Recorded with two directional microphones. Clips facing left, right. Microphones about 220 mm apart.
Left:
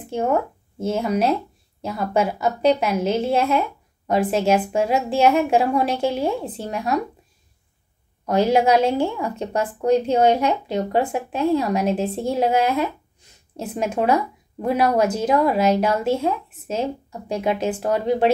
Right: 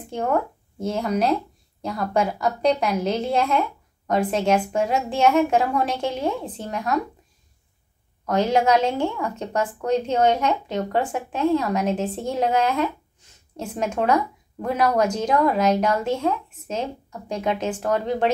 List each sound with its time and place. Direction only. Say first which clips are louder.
0.1 s a woman's voice: left 2 dB; 5° left (ahead or behind)
8.3 s speech: left 2 dB; 10° left (ahead or behind)